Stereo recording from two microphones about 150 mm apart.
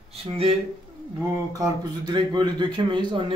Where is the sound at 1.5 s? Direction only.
30° right (ahead or behind).